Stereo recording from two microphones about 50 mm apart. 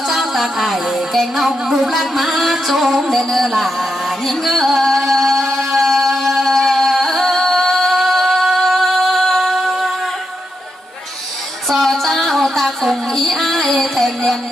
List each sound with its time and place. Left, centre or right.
0.1 s music: centre
11.7 s music: centre